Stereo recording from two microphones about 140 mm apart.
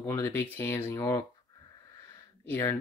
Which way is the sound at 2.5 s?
15° left (ahead or behind).